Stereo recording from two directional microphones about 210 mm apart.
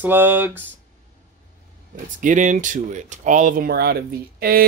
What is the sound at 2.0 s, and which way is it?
Speech, 35° right (ahead or behind).